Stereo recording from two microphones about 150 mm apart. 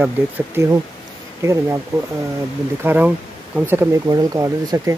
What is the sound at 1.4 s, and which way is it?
Speech, 20° right (ahead or behind).